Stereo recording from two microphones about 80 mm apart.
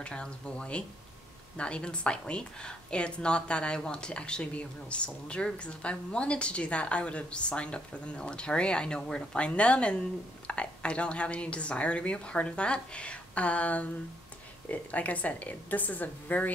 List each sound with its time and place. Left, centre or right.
0.0 s a woman's voice: centre